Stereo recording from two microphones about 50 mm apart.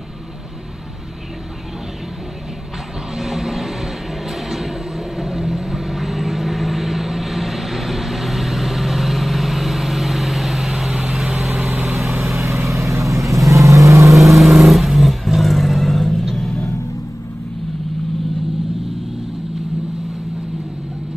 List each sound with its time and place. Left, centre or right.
3.2 s vehicle: centre
12.2 s vehicle: centre
12.7 s vehicle: right
14.3 s vehicle: centre